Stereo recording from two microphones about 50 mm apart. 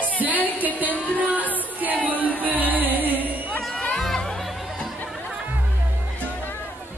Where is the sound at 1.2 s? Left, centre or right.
Right.